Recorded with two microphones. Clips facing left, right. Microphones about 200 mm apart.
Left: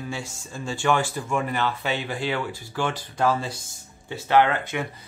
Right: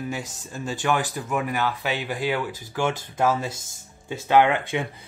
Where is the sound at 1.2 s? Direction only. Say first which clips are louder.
Even; 5° right (ahead or behind).